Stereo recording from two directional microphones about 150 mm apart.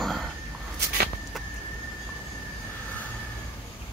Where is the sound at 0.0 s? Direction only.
Centre (ahead or behind).